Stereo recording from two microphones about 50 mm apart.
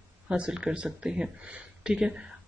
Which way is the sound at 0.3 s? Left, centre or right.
Centre.